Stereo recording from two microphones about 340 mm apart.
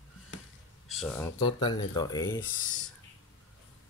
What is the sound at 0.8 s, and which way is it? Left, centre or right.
Speech, centre.